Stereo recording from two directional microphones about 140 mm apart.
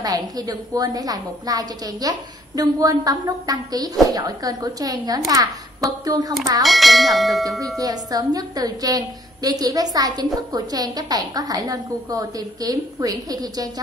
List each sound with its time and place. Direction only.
0.0 s a woman's voice: 30° right (ahead or behind)
6.6 s bell: centre (ahead or behind)
7.8 s a woman's voice: 25° right (ahead or behind)